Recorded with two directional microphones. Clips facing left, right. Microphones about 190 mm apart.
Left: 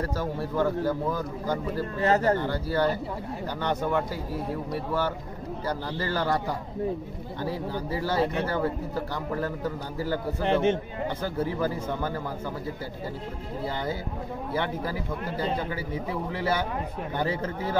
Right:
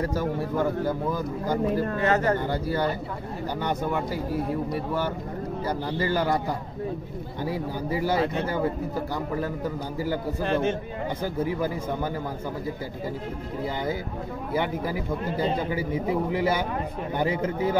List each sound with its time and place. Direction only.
0.0 s a man's voice: 15° right (ahead or behind)
2.0 s speech: 35° left (ahead or behind)
2.3 s a man's voice: 15° right (ahead or behind)
7.4 s a man's voice: 15° right (ahead or behind)
10.4 s a man's voice: 20° left (ahead or behind)
11.3 s a man's voice: 15° right (ahead or behind)
14.5 s a man's voice: 15° right (ahead or behind)